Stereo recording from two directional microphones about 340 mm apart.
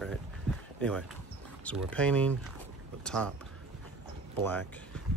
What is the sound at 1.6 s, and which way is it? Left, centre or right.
Speech, centre.